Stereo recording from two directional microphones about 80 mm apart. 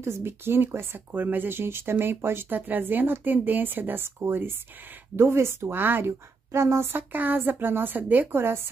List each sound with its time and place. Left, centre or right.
0.0 s speech: right